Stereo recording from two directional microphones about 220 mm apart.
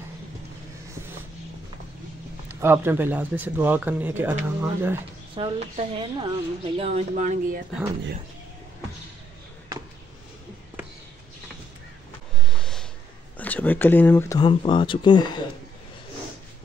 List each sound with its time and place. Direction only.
2.4 s speech: 10° right (ahead or behind)
5.3 s speech: 25° right (ahead or behind)
12.4 s a sound: 5° left (ahead or behind)
13.4 s speech: 5° left (ahead or behind)
14.4 s speech: 25° left (ahead or behind)